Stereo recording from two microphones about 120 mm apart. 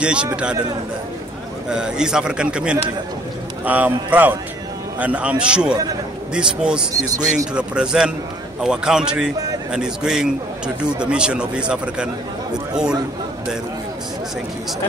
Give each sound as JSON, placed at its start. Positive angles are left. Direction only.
{"t": 0.0, "sound": "speech", "side_deg": -10}
{"t": 1.7, "sound": "speech", "side_deg": -5}
{"t": 7.0, "sound": "a man's voice", "side_deg": -25}
{"t": 7.5, "sound": "a man's voice", "side_deg": -5}